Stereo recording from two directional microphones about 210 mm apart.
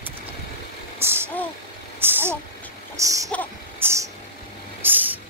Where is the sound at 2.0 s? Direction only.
10° right (ahead or behind).